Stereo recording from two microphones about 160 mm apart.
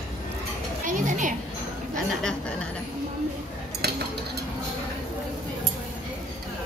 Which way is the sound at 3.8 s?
90° right.